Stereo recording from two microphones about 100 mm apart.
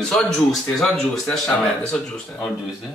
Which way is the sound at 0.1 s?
5° left (ahead or behind).